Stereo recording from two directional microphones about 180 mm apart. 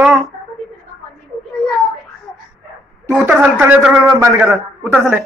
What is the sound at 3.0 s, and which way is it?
A woman's voice, 15° right (ahead or behind).